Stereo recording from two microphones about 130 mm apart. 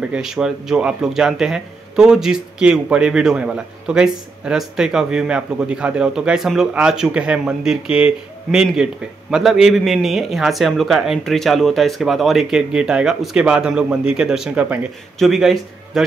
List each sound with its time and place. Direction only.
0.1 s a man's voice: 5° right (ahead or behind)